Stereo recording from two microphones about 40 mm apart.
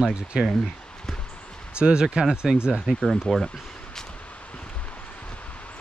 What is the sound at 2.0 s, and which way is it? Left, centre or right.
Speech, centre.